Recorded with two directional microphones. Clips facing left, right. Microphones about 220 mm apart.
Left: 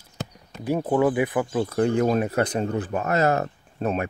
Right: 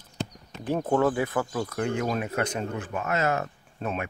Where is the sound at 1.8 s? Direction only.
35° left (ahead or behind).